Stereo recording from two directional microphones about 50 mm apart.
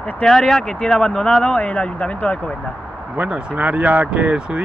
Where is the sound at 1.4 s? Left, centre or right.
Left.